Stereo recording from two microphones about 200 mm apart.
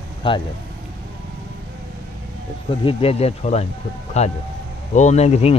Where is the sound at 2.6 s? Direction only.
30° left (ahead or behind).